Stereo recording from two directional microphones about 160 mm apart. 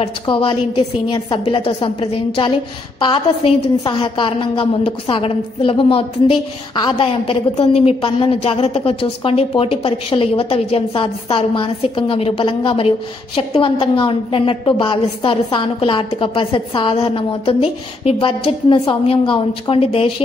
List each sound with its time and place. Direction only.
0.0 s a woman's voice: 35° left (ahead or behind)